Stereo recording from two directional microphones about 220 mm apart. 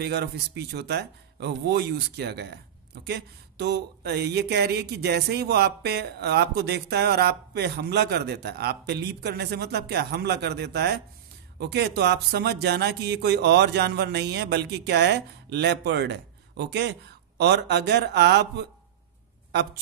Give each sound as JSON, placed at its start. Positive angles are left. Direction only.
{"t": 0.0, "sound": "speech", "side_deg": -50}